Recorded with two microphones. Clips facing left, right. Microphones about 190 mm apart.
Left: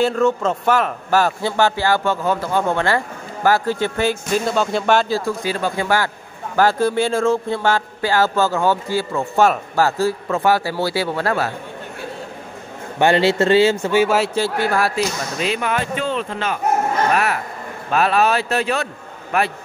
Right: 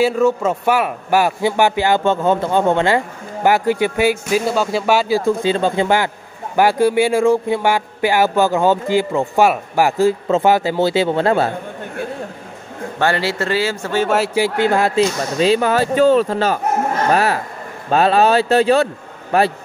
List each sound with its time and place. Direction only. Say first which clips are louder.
0.0 s a man's voice: right 2 dB; 10° right (ahead or behind)
5.2 s a man's voice: right 6 dB; 25° right (ahead or behind)
13.0 s speech: left 4 dB; 20° left (ahead or behind)
13.9 s speech: right 2 dB; centre (ahead or behind)
14.3 s speech: right 3 dB; 15° right (ahead or behind)